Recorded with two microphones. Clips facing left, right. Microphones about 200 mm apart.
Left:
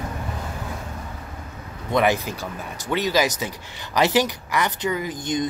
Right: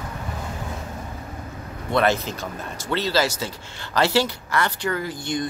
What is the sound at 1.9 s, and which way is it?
Speech, 15° left (ahead or behind).